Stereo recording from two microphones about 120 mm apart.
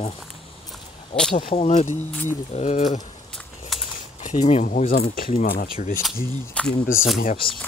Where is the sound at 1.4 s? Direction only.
65° left (ahead or behind).